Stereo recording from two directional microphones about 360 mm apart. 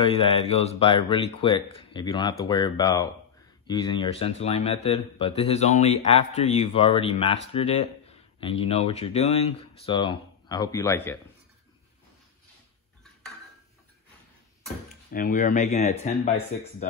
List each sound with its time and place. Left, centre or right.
0.0 s speech: centre
15.1 s speech: left